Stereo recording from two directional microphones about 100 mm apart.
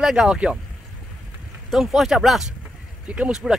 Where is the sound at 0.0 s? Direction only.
5° right (ahead or behind).